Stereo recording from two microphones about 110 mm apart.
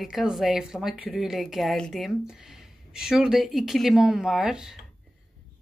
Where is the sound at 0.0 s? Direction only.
5° right (ahead or behind).